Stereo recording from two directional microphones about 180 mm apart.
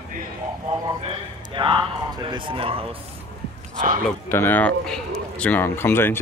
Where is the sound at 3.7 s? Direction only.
50° right (ahead or behind).